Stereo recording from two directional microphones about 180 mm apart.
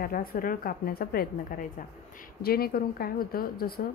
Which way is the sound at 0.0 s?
55° left (ahead or behind).